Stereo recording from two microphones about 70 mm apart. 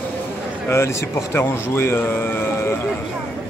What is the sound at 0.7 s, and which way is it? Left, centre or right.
Speech, left.